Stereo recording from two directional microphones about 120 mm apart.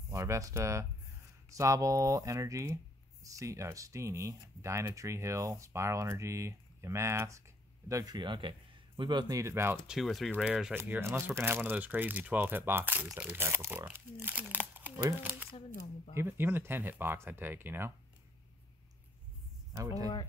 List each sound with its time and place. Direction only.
0.1 s speech: 25° right (ahead or behind)
9.4 s speech: 20° right (ahead or behind)
9.8 s speech: centre (ahead or behind)
10.7 s speech: 20° right (ahead or behind)
19.7 s speech: 30° right (ahead or behind)